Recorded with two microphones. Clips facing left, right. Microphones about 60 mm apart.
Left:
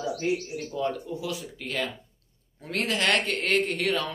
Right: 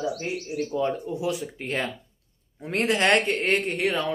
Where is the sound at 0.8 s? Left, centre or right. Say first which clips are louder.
Right 1 dB; right.